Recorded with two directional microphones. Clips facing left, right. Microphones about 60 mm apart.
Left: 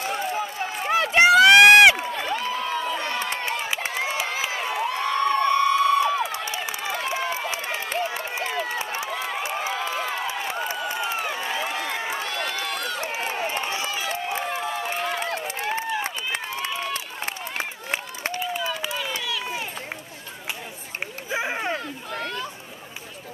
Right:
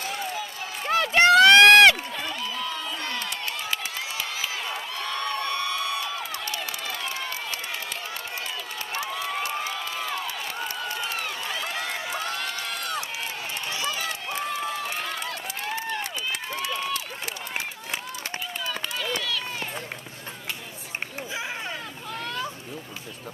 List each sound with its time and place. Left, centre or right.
0.0 s run: left
0.8 s run: centre
2.1 s crowd: left
3.0 s crowd: left
6.4 s run: centre
8.5 s run: left
8.7 s run: centre
9.3 s a sound: centre; by 12.5 s left
12.6 s run: left
13.0 s run: left
18.4 s run: centre
21.3 s a sound: left